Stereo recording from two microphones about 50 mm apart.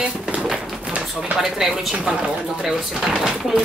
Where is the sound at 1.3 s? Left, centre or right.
Centre.